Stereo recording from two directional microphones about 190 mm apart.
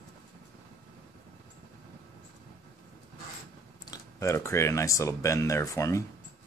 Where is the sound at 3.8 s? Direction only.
15° left (ahead or behind).